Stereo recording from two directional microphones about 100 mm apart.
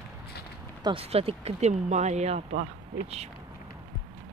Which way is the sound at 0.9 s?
85° right.